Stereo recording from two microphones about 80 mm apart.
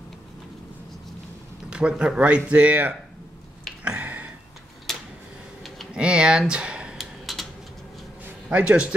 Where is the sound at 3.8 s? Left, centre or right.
Right.